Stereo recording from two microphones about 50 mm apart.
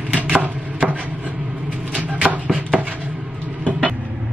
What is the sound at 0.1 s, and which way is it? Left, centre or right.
Chopping, right.